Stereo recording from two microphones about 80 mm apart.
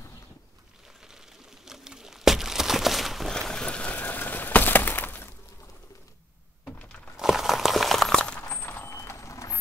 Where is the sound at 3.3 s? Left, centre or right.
Centre; by 5.2 s left.